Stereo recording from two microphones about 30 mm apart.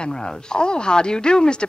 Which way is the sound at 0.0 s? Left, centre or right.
Left.